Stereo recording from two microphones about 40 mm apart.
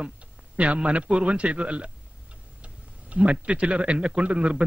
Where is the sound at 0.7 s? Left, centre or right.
Right.